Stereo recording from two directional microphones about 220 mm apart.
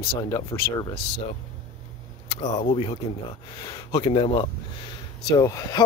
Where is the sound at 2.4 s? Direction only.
30° left (ahead or behind).